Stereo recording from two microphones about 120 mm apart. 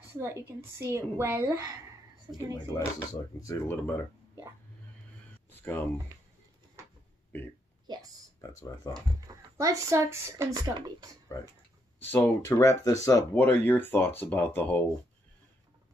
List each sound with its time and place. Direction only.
0.2 s speech: 20° right (ahead or behind)
2.7 s speech: 25° left (ahead or behind)
5.5 s a sound: 15° left (ahead or behind)
6.8 s a sound: 25° right (ahead or behind)
8.4 s speech: 25° left (ahead or behind)
8.9 s speech: 25° right (ahead or behind)
11.3 s speech: 25° left (ahead or behind)
13.3 s speech: 15° left (ahead or behind)